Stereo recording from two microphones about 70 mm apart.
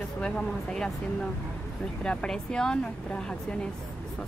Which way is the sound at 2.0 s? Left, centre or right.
Centre.